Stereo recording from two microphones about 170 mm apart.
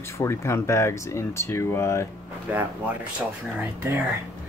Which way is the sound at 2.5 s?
10° right (ahead or behind).